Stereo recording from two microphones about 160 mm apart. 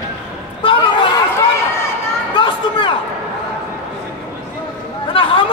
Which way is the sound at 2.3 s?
30° left (ahead or behind).